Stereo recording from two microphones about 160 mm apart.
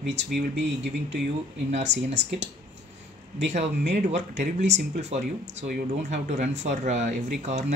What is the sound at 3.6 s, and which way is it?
Speech, 90° right.